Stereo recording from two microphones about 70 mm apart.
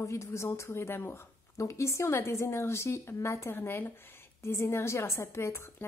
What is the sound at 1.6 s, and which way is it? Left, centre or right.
A woman's voice, left.